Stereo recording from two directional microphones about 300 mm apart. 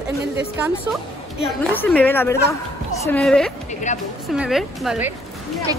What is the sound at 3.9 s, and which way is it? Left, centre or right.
Speech, left.